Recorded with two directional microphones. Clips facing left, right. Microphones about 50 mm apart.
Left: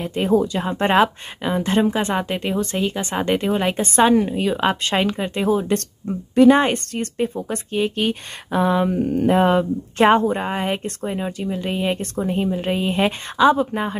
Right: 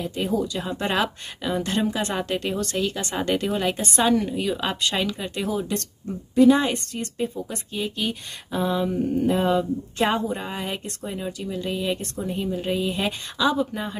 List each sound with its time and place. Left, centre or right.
0.0 s speech: left